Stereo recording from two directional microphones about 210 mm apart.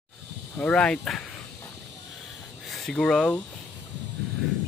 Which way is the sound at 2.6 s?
Centre (ahead or behind).